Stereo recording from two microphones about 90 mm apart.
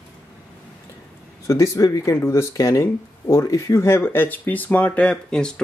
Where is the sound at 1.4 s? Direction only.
35° left (ahead or behind); by 5.5 s 10° left (ahead or behind).